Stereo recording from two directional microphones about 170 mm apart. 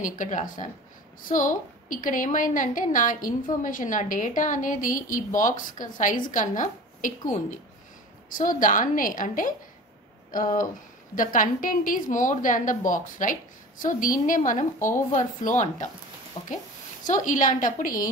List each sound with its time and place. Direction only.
0.0 s a woman's voice: 50° left (ahead or behind)
16.4 s speech: 25° left (ahead or behind)
17.1 s a woman's voice: 50° left (ahead or behind)